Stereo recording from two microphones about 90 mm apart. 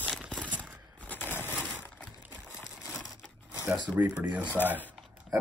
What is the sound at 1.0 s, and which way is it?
Crushing, 15° left (ahead or behind).